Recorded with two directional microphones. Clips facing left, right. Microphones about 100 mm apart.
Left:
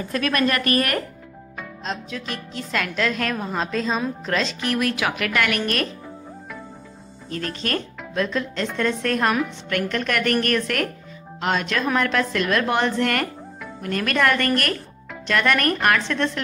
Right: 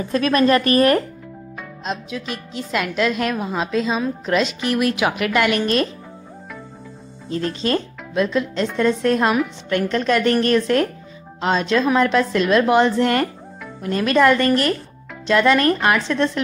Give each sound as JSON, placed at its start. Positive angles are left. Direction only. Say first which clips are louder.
{"t": 0.1, "sound": "a woman's voice", "louder": "right 6 dB", "side_deg": -25}
{"t": 1.9, "sound": "a woman's voice", "louder": "right 3 dB", "side_deg": -15}
{"t": 7.2, "sound": "a woman's voice", "louder": "right 6 dB", "side_deg": -20}